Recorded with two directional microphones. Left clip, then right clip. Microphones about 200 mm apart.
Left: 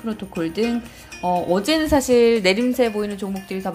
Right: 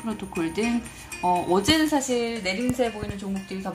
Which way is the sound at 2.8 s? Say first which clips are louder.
Left 5 dB; 25° left (ahead or behind).